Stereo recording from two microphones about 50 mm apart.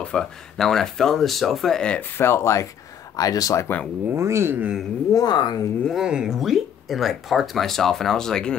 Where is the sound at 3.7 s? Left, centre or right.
Left.